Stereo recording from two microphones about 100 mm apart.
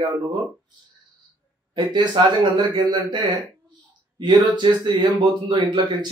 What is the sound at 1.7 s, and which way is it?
Speech, 50° right (ahead or behind).